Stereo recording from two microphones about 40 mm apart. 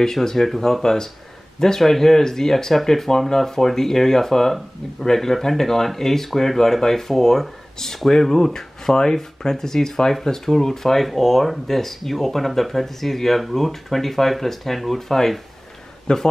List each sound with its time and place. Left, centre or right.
0.0 s speech: centre
16.1 s speech: left